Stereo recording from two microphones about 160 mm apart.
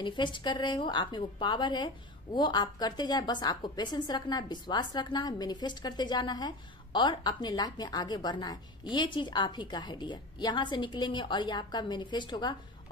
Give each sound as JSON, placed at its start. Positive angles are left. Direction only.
{"t": 0.0, "sound": "a woman's voice", "side_deg": 30}